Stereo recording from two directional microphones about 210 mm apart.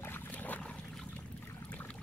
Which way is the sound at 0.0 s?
10° left (ahead or behind).